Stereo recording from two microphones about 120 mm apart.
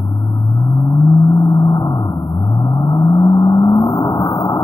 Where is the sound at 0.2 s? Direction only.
25° left (ahead or behind).